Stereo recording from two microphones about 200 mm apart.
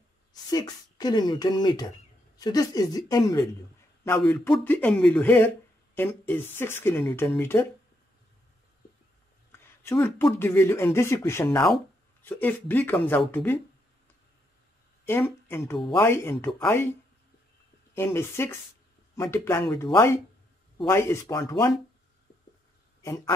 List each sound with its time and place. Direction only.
0.3 s speech: 20° left (ahead or behind)
4.2 s speech: 5° left (ahead or behind)
9.5 s a sound: 10° left (ahead or behind)
10.4 s speech: 10° left (ahead or behind)
15.0 s speech: 10° left (ahead or behind)
17.9 s speech: 15° left (ahead or behind)
23.0 s speech: 15° left (ahead or behind)